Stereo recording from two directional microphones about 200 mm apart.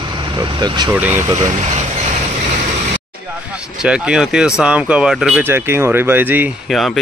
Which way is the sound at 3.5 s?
5° right (ahead or behind).